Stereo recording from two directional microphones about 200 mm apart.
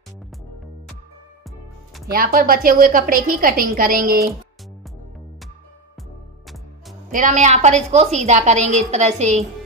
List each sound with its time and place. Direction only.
2.1 s a woman's voice: 45° right (ahead or behind)
7.1 s a woman's voice: 40° right (ahead or behind)